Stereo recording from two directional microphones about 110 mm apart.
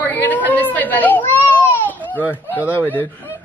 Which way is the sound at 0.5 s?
15° left (ahead or behind).